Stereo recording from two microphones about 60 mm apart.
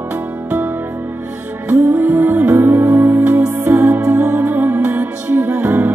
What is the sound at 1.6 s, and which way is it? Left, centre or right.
Music, right.